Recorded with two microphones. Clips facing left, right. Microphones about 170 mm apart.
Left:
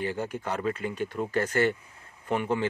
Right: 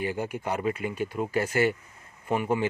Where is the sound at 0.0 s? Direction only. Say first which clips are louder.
Right 1 dB; 10° right (ahead or behind).